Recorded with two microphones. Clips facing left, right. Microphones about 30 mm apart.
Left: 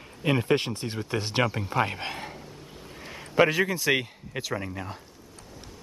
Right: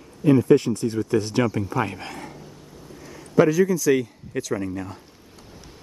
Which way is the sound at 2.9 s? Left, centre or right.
Left.